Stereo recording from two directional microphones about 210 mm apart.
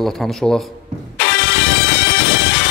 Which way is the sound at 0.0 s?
Centre (ahead or behind).